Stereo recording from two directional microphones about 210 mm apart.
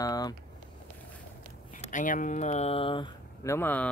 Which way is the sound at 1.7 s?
35° left (ahead or behind).